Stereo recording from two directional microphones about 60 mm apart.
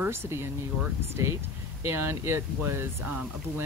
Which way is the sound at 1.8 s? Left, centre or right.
Right.